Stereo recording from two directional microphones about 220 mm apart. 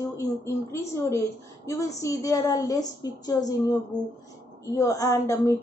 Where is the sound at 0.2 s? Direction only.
15° left (ahead or behind).